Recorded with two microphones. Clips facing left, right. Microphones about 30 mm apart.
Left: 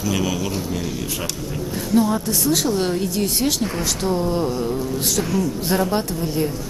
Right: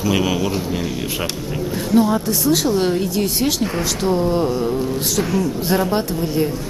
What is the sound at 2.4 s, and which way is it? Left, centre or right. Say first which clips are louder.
A woman's voice: right 3 dB; centre.